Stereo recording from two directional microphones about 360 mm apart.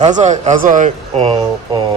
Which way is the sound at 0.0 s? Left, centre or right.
Centre.